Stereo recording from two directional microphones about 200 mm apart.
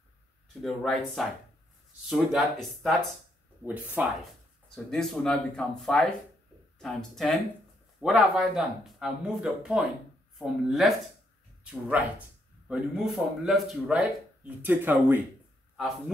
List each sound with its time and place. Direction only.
0.6 s speech: centre (ahead or behind)
4.0 s speech: 10° right (ahead or behind)
4.7 s speech: 5° left (ahead or behind)
12.6 s speech: 5° right (ahead or behind)